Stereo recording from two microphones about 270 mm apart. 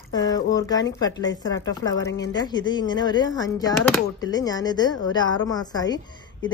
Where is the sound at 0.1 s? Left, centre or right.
Centre.